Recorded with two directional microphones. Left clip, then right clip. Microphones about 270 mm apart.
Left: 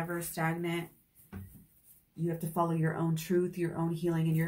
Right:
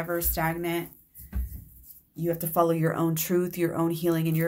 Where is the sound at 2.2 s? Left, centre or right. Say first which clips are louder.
Right 8 dB; right.